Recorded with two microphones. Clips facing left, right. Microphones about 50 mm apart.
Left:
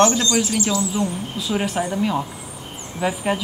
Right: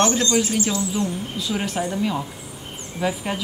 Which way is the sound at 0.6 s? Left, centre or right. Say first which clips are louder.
Left 2 dB; left.